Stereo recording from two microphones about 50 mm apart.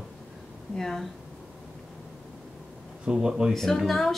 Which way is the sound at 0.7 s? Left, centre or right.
Centre.